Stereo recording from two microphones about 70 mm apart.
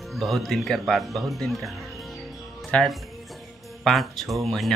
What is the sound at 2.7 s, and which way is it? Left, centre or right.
Speech, centre.